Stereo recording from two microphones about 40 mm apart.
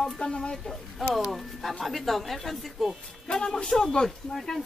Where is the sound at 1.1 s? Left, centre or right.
Centre.